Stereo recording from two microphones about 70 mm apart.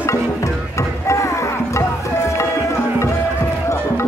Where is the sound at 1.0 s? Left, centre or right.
Left.